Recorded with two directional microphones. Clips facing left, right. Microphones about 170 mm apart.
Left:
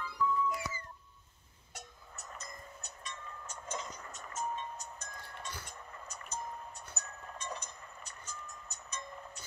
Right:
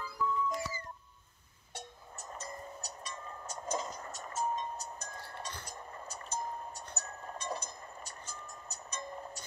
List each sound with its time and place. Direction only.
0.0 s music: 40° right (ahead or behind)
1.8 s vehicle: 30° right (ahead or behind)
5.7 s music: 35° right (ahead or behind)
7.0 s a sound: 35° right (ahead or behind)
8.3 s vehicle: 35° right (ahead or behind)